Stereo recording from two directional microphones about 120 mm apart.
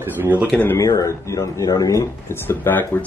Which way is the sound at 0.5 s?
20° left (ahead or behind).